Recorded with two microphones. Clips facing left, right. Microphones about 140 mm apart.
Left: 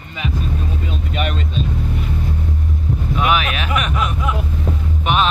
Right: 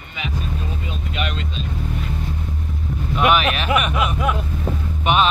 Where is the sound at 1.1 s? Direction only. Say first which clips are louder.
Left 4 dB; 45° left (ahead or behind).